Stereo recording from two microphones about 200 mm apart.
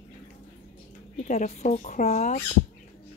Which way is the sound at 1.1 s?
35° left (ahead or behind).